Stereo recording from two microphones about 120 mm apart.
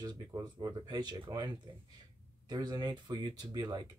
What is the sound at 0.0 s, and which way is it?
Speech, 35° right (ahead or behind).